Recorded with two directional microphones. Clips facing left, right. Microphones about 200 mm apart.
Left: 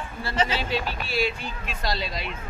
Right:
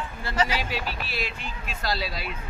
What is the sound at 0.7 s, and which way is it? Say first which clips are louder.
Speech: left 4 dB; centre (ahead or behind).